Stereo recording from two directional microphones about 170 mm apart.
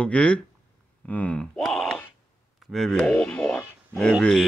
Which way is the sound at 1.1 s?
10° left (ahead or behind).